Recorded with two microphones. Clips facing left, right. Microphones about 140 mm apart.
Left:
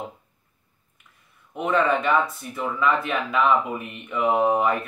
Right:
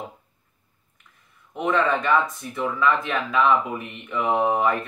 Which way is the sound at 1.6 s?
10° left (ahead or behind).